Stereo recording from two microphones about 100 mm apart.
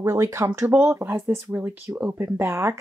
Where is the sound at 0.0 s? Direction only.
30° right (ahead or behind).